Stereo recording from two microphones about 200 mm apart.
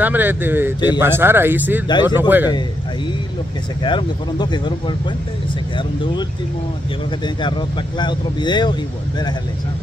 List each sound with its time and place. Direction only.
0.0 s speech: 10° right (ahead or behind)
3.8 s speech: 20° left (ahead or behind)
7.4 s speech: 25° left (ahead or behind)